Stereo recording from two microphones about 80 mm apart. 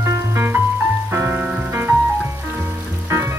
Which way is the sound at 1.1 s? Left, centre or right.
Right.